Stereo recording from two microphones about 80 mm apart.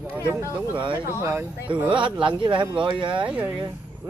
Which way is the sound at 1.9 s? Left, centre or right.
Right.